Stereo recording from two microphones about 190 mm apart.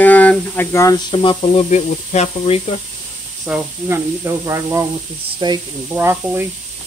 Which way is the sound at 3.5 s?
10° right (ahead or behind).